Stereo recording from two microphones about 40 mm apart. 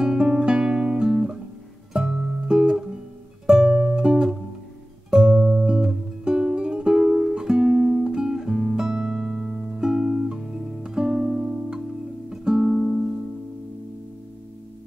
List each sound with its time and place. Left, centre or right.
0.0 s guitar: centre
2.0 s music: right
7.0 s music: centre
7.3 s guitar: centre
8.9 s music: centre
9.3 s music: centre
11.3 s music: right